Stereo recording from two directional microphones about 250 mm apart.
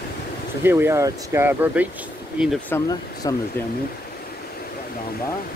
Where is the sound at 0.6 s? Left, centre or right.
Centre.